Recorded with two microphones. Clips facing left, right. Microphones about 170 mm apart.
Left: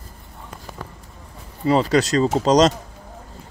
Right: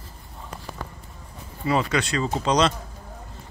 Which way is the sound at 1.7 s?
35° left (ahead or behind).